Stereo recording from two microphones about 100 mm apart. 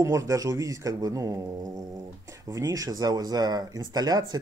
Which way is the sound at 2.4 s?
35° right (ahead or behind).